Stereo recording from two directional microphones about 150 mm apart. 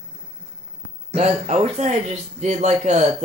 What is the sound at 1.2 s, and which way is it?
Speech, 45° right (ahead or behind).